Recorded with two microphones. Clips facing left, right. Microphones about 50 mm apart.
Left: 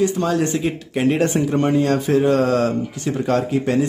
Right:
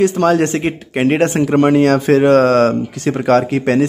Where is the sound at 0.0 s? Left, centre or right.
Right.